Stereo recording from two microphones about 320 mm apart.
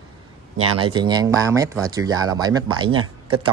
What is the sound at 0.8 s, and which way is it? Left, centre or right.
A man's voice, centre.